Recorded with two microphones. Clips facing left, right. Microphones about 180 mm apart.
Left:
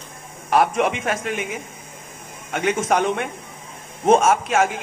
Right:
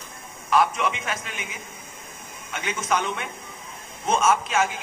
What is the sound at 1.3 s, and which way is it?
Speech, 65° left (ahead or behind).